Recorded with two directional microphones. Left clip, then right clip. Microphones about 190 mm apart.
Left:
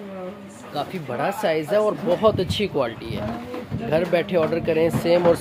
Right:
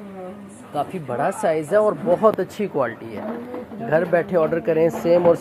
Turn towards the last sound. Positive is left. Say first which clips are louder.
# right 2 dB
turn(degrees=5)  # may be behind; listen again after turning